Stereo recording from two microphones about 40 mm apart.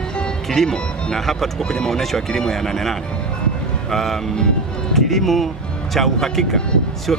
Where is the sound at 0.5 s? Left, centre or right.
Centre.